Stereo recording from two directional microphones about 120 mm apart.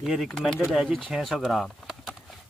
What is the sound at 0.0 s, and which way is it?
Speech, centre (ahead or behind).